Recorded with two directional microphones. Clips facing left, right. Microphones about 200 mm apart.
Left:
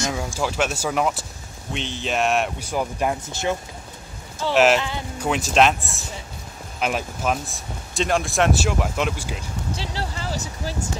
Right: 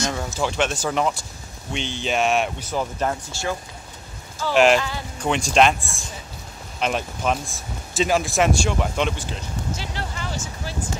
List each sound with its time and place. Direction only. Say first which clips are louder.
0.0 s speech: even; 5° left (ahead or behind)
2.6 s speech: left 1 dB; 10° left (ahead or behind)
4.6 s speech: right 1 dB; 5° left (ahead or behind)
9.8 s speech: left 1 dB; 30° left (ahead or behind)